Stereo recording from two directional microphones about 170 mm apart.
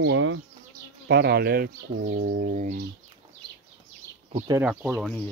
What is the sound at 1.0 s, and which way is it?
Speech, 75° right (ahead or behind).